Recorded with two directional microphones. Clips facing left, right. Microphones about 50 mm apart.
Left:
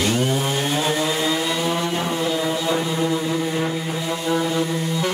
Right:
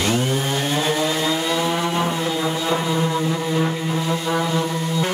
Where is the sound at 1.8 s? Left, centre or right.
Right.